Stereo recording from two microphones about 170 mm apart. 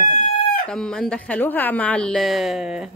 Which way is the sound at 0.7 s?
5° left (ahead or behind).